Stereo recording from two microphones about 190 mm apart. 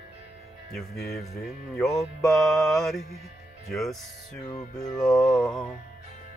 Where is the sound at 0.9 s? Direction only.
55° left (ahead or behind).